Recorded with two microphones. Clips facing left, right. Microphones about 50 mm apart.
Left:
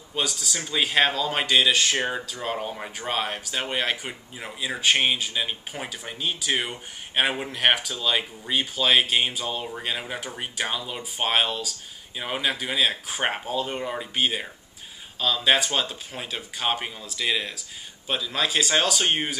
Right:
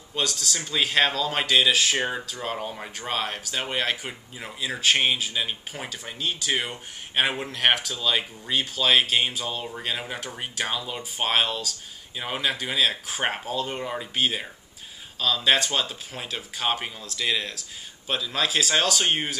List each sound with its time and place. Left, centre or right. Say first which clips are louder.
0.1 s speech: even; centre